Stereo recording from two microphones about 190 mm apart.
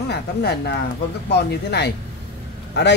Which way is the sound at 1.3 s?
60° left (ahead or behind).